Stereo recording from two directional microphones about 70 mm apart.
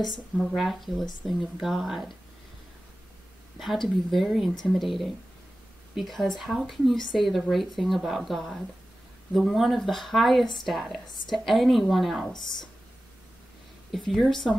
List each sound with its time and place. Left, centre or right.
0.4 s speech: centre
3.5 s speech: centre
13.9 s speech: centre